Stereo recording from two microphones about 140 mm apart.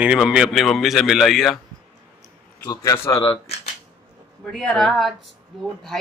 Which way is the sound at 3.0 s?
15° left (ahead or behind).